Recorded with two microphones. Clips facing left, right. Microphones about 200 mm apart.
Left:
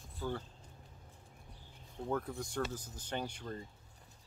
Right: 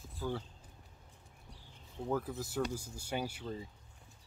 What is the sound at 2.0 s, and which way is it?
Speech, 5° right (ahead or behind).